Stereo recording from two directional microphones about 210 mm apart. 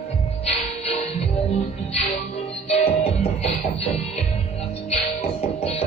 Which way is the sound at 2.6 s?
30° left (ahead or behind).